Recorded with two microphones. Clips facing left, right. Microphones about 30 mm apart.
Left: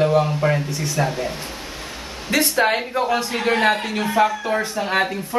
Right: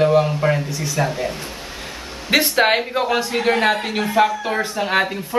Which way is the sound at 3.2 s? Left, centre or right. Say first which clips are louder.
Right 1 dB; centre.